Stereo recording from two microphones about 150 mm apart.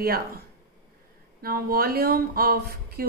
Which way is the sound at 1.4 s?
85° right.